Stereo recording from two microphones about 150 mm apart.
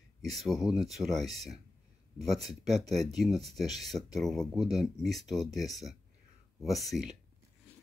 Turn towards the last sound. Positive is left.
turn(degrees=0)  # may be behind; listen again after turning